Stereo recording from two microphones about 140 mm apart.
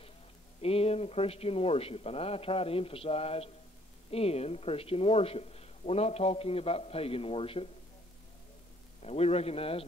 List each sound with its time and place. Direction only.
0.6 s a man's voice: 45° left (ahead or behind)
9.0 s a man's voice: 45° left (ahead or behind)